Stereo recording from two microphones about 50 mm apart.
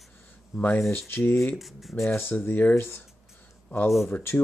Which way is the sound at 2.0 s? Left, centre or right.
Left.